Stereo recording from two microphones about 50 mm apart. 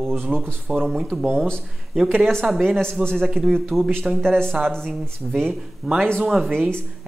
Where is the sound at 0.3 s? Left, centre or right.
Right.